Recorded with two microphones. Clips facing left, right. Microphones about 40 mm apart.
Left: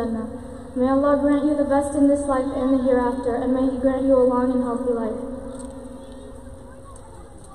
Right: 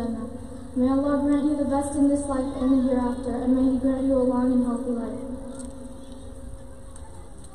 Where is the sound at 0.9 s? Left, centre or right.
Left.